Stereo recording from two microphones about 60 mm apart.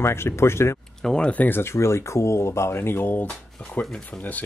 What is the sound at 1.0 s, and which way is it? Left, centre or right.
Speech, centre.